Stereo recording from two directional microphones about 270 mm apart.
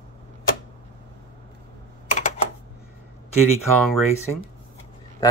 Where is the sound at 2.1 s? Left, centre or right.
Left.